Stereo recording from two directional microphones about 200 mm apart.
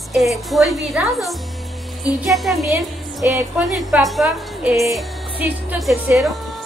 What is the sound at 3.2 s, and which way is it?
Music, 10° right (ahead or behind).